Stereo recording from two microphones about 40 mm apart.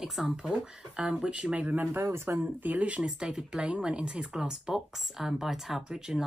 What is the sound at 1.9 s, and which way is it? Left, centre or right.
Speech, right.